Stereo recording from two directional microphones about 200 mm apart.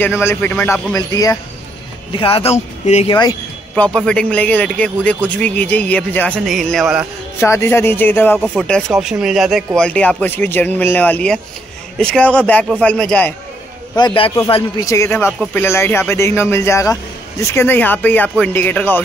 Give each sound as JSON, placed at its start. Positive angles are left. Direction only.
{"t": 0.0, "sound": "speech", "side_deg": 10}
{"t": 3.7, "sound": "speech", "side_deg": 5}
{"t": 7.3, "sound": "speech", "side_deg": 15}
{"t": 13.9, "sound": "speech", "side_deg": 25}